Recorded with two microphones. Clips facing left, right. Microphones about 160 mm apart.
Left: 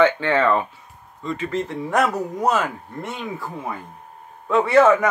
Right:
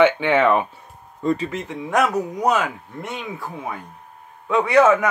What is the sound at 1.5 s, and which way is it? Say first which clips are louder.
Speech: left 1 dB; centre (ahead or behind).